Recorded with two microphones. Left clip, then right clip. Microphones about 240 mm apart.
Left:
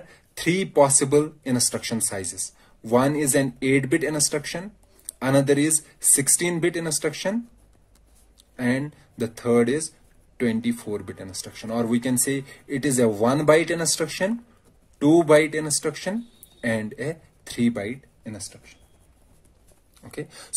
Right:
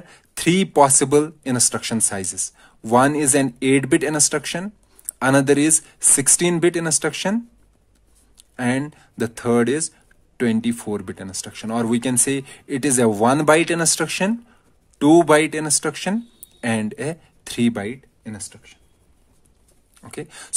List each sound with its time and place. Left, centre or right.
0.4 s speech: right
8.5 s speech: right
15.0 s speech: right
20.0 s speech: right